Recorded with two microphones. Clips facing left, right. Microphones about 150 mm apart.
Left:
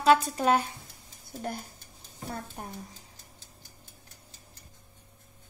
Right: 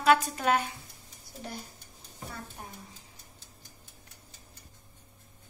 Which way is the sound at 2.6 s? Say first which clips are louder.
Left 5 dB; 45° left (ahead or behind).